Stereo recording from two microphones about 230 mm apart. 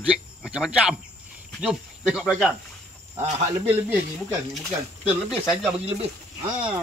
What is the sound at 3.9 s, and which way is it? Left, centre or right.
Speech, centre.